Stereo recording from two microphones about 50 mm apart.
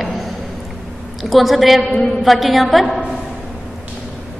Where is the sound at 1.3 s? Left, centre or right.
Centre.